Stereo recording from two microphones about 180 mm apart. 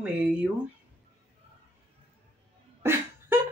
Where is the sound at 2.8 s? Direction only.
15° right (ahead or behind).